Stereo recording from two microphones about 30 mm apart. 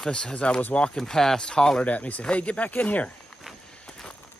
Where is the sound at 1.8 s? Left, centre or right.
Left.